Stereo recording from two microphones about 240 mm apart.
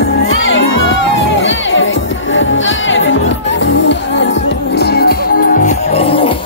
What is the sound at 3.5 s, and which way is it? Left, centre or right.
Music, left.